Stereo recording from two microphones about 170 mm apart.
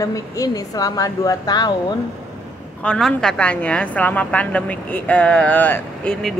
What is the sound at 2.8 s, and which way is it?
A woman's voice, 5° left (ahead or behind).